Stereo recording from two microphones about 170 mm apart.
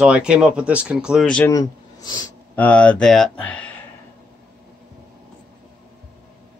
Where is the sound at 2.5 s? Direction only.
10° left (ahead or behind).